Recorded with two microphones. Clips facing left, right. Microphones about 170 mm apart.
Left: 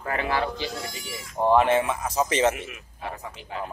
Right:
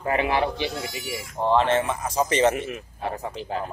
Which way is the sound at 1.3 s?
15° left (ahead or behind).